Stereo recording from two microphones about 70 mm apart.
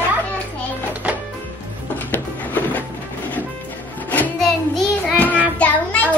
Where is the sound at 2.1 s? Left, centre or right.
Left.